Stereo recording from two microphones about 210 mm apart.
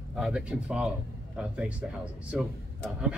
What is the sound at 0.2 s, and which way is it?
A man's voice, 5° right (ahead or behind).